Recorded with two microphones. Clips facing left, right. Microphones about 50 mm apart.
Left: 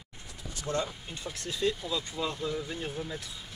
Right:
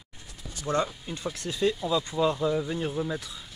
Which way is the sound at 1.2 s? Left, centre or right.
Right.